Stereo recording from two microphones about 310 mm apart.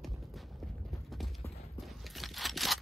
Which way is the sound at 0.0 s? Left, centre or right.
Centre.